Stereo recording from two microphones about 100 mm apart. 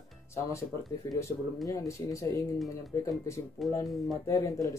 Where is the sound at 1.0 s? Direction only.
30° left (ahead or behind).